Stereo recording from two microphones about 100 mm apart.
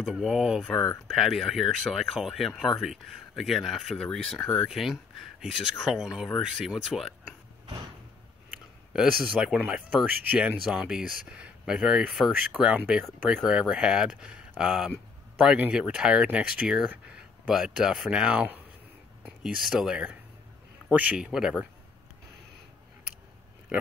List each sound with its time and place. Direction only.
0.0 s speech: centre (ahead or behind)
8.9 s speech: 5° right (ahead or behind)
10.3 s speech: 15° right (ahead or behind)
10.7 s speech: 5° right (ahead or behind)